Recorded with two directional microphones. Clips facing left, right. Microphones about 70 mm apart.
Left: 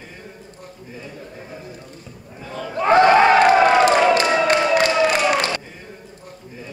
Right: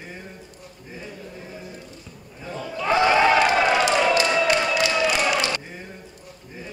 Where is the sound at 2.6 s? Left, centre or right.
Left.